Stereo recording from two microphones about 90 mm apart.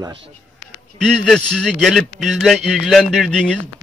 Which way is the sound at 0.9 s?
5° left (ahead or behind).